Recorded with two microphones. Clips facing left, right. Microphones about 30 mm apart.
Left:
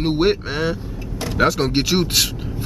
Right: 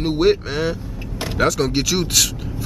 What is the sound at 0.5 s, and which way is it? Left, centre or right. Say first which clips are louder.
Speech: even; centre.